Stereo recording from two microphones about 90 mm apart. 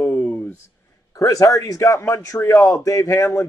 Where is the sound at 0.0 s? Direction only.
15° left (ahead or behind).